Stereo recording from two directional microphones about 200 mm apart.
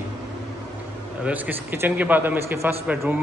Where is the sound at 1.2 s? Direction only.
10° right (ahead or behind).